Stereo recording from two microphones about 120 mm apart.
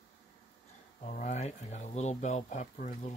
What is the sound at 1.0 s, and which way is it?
Speech, 90° left.